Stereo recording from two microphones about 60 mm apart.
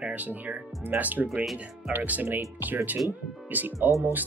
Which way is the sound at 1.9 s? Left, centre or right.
Right.